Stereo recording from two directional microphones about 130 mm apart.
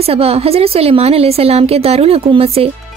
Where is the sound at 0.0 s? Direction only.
50° right (ahead or behind).